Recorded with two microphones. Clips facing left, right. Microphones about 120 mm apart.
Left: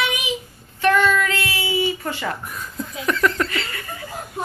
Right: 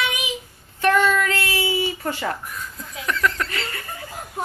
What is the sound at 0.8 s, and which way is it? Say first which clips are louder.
Speech: left 1 dB; 40° right (ahead or behind).